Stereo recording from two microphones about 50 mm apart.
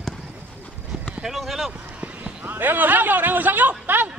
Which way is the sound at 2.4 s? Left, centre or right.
Right.